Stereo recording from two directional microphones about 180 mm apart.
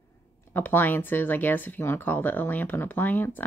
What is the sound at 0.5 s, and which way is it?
Speech, 10° left (ahead or behind).